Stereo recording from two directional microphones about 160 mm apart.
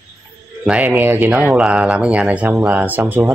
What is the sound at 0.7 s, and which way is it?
Speech, 10° right (ahead or behind).